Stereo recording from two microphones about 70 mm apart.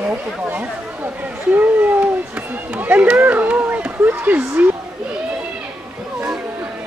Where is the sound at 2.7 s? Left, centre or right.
Right.